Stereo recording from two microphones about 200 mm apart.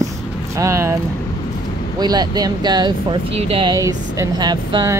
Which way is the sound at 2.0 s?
20° right (ahead or behind).